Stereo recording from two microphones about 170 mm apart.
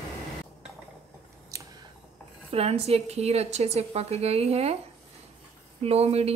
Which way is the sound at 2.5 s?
35° right (ahead or behind).